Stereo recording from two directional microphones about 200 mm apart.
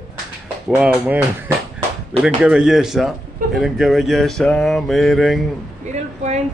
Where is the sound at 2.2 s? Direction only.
5° right (ahead or behind).